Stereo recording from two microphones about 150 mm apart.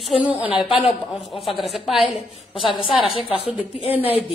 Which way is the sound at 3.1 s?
40° left (ahead or behind).